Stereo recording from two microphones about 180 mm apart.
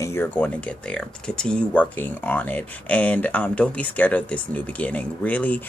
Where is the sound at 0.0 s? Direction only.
10° left (ahead or behind).